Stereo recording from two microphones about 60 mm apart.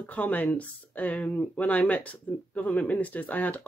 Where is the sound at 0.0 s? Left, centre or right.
Left.